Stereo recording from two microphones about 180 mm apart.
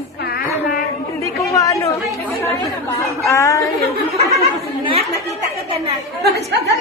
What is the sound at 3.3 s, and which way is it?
Speech, 15° left (ahead or behind).